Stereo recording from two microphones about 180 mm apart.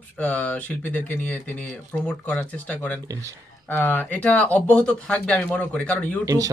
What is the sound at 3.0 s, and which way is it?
Speech, 20° right (ahead or behind).